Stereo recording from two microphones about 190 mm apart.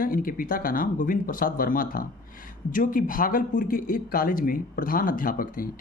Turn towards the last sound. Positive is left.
turn(degrees=50)  # may be behind; listen again after turning